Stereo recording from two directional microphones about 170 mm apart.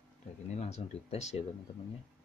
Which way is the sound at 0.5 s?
40° left (ahead or behind).